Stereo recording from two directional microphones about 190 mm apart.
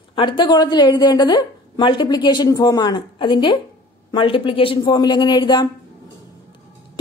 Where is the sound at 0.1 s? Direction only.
25° left (ahead or behind).